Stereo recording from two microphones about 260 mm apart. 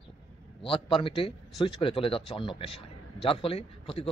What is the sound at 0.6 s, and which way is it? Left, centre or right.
A man's voice, centre.